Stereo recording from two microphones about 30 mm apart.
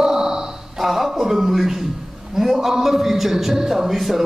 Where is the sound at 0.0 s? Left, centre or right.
Centre.